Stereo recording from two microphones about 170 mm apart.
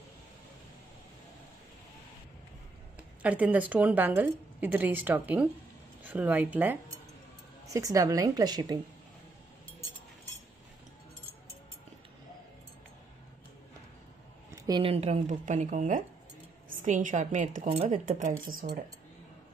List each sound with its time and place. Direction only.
3.2 s a woman's voice: 10° right (ahead or behind)
14.5 s speech: 30° right (ahead or behind); by 18.8 s 50° right (ahead or behind)